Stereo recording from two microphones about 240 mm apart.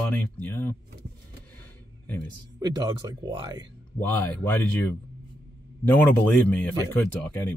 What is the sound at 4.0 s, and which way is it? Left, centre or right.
Speech, centre.